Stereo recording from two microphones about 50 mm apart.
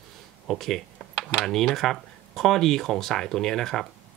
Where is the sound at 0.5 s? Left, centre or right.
Centre.